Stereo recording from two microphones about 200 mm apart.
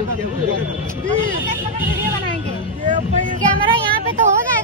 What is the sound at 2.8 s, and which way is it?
Vehicle, 40° right (ahead or behind).